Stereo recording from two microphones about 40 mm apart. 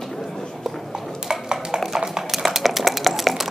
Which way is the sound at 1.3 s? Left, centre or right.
Centre.